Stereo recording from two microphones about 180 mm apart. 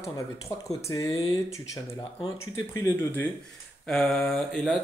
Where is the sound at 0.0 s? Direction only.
15° left (ahead or behind).